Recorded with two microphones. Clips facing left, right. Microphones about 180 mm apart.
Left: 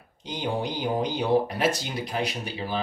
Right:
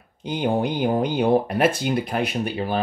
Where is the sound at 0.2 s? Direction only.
55° right (ahead or behind).